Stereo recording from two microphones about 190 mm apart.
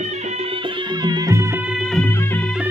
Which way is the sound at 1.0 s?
20° right (ahead or behind).